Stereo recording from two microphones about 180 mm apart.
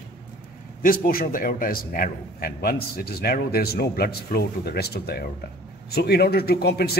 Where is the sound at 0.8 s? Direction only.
55° left (ahead or behind).